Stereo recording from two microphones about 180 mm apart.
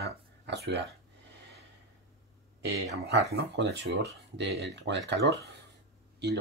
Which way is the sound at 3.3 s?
75° right (ahead or behind).